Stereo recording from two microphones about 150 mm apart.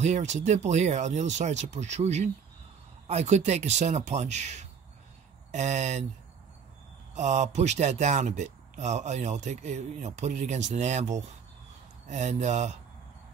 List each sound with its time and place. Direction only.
0.0 s speech: 50° right (ahead or behind)
7.2 s speech: 50° right (ahead or behind)